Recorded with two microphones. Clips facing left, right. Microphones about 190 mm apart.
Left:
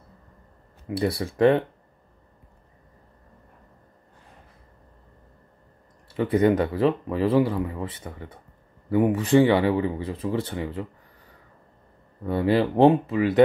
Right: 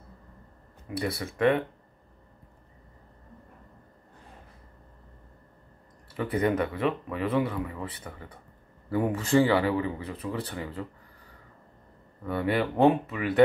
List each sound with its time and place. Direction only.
0.8 s speech: 30° left (ahead or behind)
6.1 s speech: 25° left (ahead or behind)
12.3 s speech: 25° left (ahead or behind)